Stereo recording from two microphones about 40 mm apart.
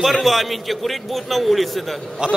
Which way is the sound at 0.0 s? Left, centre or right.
Centre.